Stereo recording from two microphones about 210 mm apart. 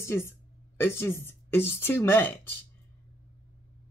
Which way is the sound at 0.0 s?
10° left (ahead or behind).